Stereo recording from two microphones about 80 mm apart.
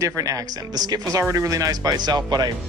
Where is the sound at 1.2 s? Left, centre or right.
Right.